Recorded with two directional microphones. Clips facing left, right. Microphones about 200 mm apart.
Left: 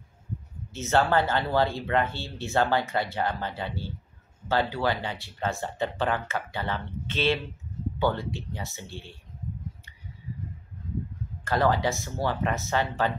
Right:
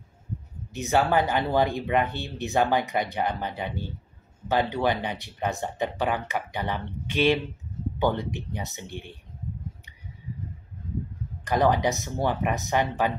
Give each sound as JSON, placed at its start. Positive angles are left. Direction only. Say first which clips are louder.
{"t": 0.7, "sound": "speech", "louder": "right 1 dB", "side_deg": -15}
{"t": 11.4, "sound": "speech", "louder": "right 2 dB", "side_deg": -15}